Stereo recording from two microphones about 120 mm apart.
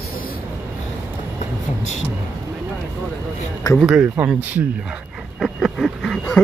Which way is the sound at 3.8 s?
10° right (ahead or behind).